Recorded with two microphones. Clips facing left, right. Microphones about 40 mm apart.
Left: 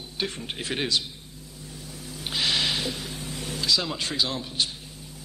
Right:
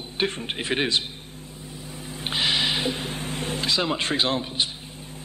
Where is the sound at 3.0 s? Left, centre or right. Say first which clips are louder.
Right 5 dB; right.